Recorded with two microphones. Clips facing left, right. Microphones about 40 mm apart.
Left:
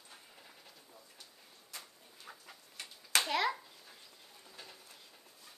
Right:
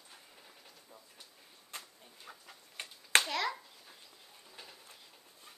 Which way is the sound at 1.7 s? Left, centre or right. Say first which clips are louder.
Right 3 dB; right.